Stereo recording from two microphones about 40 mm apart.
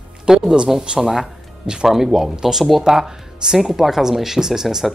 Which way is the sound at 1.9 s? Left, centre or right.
Centre.